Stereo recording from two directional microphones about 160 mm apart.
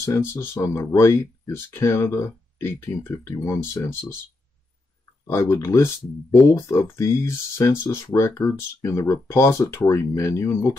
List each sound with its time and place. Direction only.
0.0 s speech: 15° left (ahead or behind)
5.2 s speech: 15° left (ahead or behind)